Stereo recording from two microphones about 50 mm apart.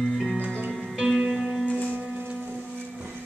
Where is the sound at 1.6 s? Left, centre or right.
Left.